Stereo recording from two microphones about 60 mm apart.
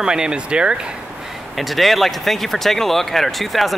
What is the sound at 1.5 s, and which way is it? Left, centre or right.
Speech, centre.